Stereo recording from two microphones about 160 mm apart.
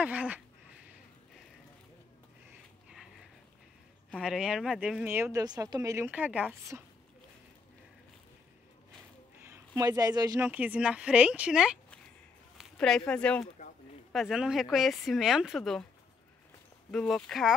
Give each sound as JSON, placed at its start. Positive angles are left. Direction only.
{"t": 0.0, "sound": "speech", "side_deg": -10}
{"t": 4.1, "sound": "speech", "side_deg": -5}
{"t": 9.4, "sound": "speech", "side_deg": -20}
{"t": 10.4, "sound": "speech", "side_deg": -10}
{"t": 12.7, "sound": "speech", "side_deg": 5}
{"t": 16.9, "sound": "speech", "side_deg": 0}